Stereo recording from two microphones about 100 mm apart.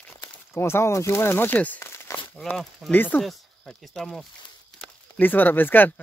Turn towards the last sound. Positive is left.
turn(degrees=20)  # may be behind; listen again after turning